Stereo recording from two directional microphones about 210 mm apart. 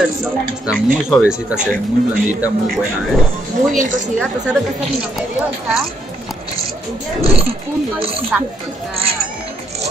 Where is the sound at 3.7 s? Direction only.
40° right (ahead or behind).